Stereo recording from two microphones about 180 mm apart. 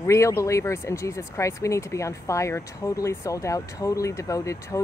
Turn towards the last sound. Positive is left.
turn(degrees=15)  # may be behind; listen again after turning